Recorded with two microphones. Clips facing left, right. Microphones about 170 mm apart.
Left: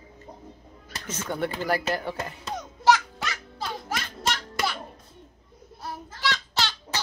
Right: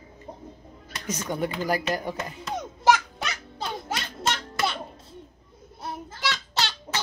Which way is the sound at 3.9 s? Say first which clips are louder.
Right 1 dB; 25° right (ahead or behind).